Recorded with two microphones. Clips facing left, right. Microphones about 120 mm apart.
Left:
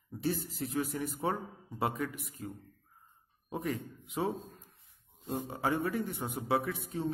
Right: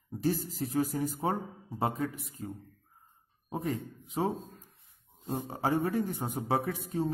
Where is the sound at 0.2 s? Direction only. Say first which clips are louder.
Right 3 dB; 35° right (ahead or behind).